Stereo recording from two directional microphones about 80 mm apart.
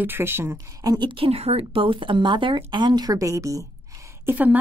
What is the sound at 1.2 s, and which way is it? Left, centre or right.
A woman's voice, right.